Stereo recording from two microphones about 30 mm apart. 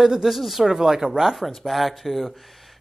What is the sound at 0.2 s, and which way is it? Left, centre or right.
Speech, centre.